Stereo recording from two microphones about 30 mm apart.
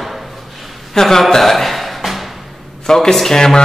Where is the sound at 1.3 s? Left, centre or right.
Centre.